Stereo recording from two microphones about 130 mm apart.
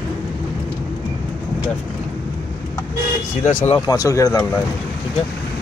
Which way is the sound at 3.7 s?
25° left (ahead or behind).